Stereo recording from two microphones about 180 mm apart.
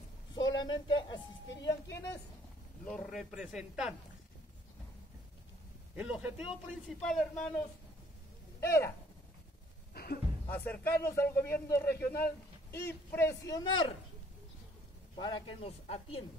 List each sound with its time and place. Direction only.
0.3 s a sound: 25° left (ahead or behind)
2.8 s speech: 5° left (ahead or behind)
5.9 s speech: 5° right (ahead or behind)
8.5 s a man's voice: 15° left (ahead or behind)
9.9 s music: 60° left (ahead or behind)
10.5 s a man's voice: 10° left (ahead or behind)
15.1 s a man's voice: 25° left (ahead or behind)